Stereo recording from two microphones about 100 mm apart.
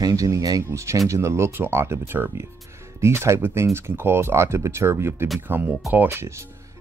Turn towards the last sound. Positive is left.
turn(degrees=-20)  # may be behind; listen again after turning